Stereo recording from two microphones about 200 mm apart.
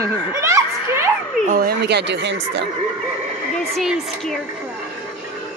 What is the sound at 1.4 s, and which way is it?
Speech, 45° right (ahead or behind).